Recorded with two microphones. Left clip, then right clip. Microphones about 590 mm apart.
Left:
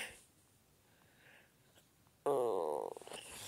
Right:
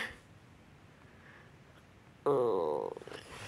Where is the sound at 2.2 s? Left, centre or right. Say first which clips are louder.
Right 5 dB; left.